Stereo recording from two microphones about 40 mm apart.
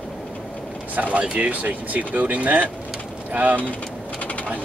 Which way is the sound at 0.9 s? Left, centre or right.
Right.